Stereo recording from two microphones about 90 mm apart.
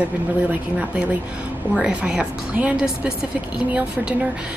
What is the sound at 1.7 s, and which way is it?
A woman's voice, 10° right (ahead or behind).